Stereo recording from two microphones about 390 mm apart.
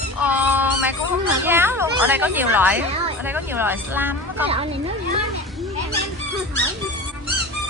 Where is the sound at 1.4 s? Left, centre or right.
Centre.